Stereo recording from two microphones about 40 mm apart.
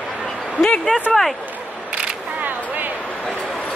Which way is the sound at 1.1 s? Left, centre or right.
Centre.